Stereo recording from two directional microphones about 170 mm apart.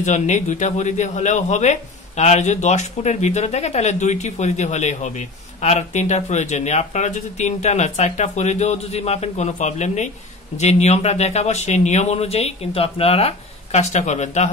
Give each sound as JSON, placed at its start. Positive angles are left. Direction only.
{"t": 0.0, "sound": "a man's voice", "side_deg": 45}